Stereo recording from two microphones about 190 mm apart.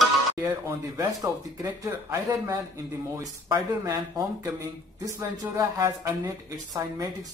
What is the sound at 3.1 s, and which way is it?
Speech, 20° right (ahead or behind).